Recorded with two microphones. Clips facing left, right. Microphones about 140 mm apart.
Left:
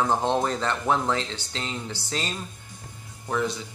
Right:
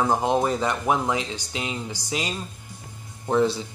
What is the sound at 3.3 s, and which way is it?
Speech, 30° right (ahead or behind).